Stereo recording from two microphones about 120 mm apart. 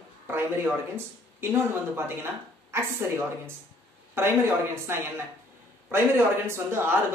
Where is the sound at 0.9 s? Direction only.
20° right (ahead or behind).